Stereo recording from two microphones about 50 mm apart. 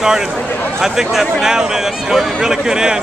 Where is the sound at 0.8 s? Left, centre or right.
Centre.